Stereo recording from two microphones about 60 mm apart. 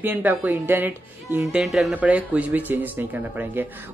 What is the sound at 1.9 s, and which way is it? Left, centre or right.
Speech, right.